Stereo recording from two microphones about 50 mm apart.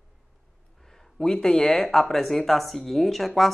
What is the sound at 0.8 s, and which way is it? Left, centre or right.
Speech, centre.